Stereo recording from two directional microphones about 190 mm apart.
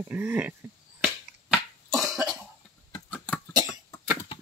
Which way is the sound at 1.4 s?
Centre (ahead or behind).